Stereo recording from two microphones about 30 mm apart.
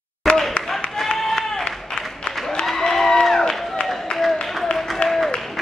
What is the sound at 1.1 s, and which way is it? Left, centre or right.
Applause, centre.